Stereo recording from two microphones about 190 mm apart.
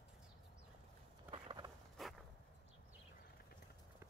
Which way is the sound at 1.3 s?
25° right (ahead or behind).